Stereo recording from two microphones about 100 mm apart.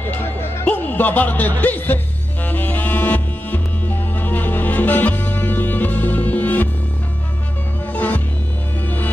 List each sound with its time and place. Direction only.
0.4 s music: 20° left (ahead or behind)
7.9 s music: 15° left (ahead or behind)